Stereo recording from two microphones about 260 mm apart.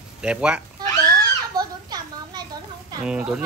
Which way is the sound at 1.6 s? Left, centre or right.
Centre.